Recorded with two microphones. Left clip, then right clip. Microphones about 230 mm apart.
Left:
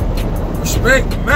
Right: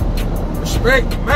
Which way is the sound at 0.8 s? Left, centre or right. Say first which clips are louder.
Left 1 dB; centre.